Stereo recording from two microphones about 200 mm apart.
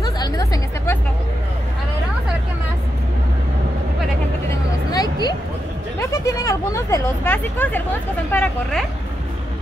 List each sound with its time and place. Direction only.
0.0 s music: 20° left (ahead or behind)
4.9 s a sound: 20° left (ahead or behind)
5.9 s vehicle: 15° left (ahead or behind)
8.3 s speech: 10° left (ahead or behind)